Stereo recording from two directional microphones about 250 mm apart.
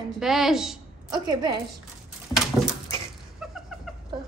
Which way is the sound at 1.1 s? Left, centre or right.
Centre.